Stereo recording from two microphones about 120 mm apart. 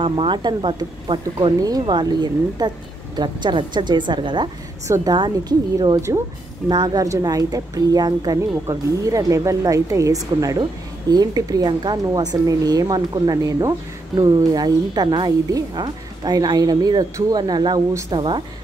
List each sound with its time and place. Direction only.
0.0 s speech: 45° right (ahead or behind)
4.8 s a woman's voice: 25° right (ahead or behind)
5.1 s speech: 35° right (ahead or behind)